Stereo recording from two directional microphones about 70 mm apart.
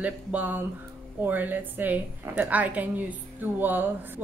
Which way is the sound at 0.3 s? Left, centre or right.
Right.